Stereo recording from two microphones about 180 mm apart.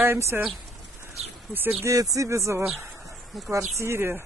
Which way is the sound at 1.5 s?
10° right (ahead or behind).